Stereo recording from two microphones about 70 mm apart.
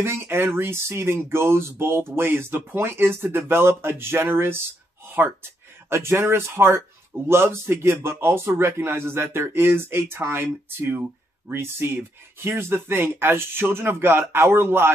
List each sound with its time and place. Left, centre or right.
0.0 s a man's voice: right
5.9 s a man's voice: right